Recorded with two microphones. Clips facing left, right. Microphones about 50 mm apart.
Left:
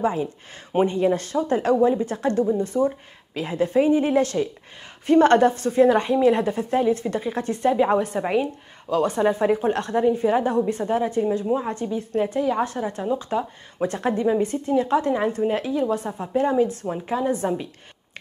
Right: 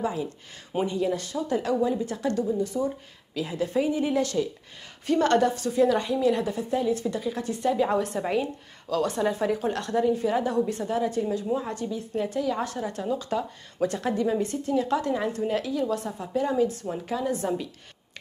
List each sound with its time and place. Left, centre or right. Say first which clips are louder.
0.0 s speech: left 5 dB; left